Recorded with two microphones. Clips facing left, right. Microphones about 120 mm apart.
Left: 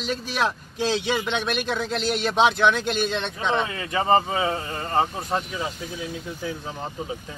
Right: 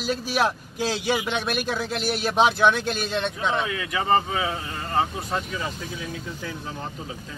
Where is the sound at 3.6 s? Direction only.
35° left (ahead or behind).